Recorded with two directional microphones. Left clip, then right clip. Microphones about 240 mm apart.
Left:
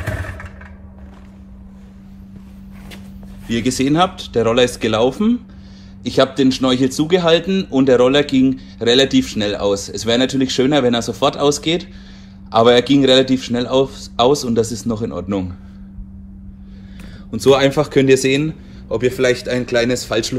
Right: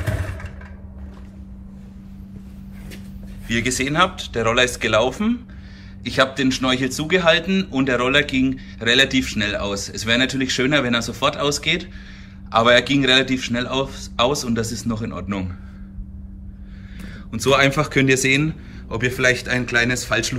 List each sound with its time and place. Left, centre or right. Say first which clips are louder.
3.4 s speech: left 3 dB; centre
17.0 s speech: left 7 dB; centre